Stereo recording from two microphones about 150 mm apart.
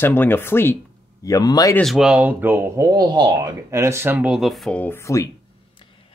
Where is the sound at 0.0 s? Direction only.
15° left (ahead or behind).